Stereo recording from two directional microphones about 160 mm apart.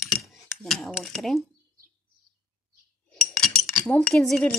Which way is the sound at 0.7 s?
Centre (ahead or behind).